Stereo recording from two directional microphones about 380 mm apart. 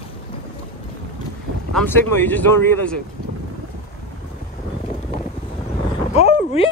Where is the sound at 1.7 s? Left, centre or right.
Centre.